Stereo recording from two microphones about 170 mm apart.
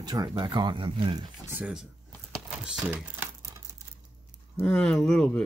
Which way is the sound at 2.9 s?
10° right (ahead or behind).